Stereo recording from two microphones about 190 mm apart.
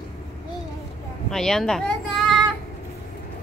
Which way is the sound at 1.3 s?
Centre (ahead or behind).